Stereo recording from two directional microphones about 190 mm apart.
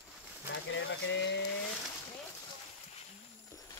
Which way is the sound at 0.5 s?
75° left (ahead or behind).